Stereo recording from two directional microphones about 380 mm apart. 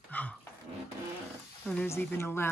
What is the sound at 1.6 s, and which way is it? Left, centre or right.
Speech, centre.